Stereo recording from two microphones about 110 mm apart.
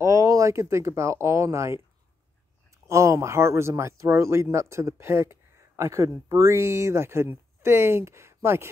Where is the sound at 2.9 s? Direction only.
25° right (ahead or behind).